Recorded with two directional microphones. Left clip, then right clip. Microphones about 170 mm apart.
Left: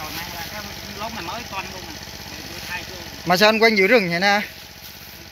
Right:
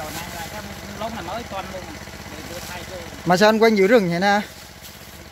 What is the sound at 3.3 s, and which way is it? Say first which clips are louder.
Speech: even; 25° right (ahead or behind).